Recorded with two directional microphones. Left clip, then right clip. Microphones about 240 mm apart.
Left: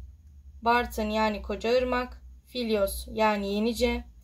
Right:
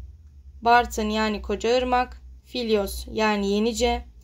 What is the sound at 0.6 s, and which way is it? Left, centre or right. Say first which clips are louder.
A woman's voice: right 6 dB; right.